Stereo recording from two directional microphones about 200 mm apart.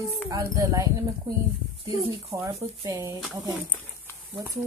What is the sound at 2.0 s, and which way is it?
Speech, 30° right (ahead or behind).